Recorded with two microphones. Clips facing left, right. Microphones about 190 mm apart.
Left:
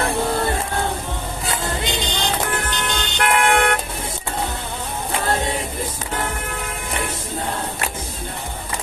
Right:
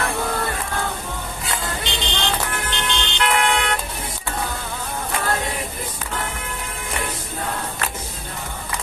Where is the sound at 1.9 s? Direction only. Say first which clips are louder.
Left 2 dB; 40° left (ahead or behind).